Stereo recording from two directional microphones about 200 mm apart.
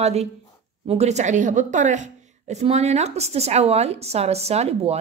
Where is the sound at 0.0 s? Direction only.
30° right (ahead or behind).